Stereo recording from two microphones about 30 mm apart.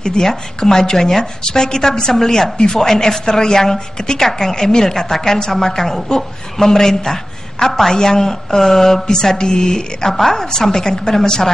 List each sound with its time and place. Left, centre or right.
0.0 s a woman's voice: centre